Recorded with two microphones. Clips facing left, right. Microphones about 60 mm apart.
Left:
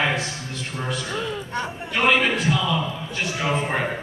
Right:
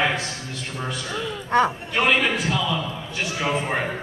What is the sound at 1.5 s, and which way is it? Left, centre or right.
Speech, right.